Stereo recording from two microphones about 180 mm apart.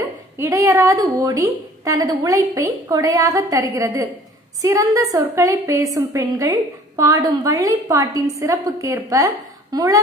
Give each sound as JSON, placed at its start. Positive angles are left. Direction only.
{"t": 0.4, "sound": "a woman's voice", "side_deg": -15}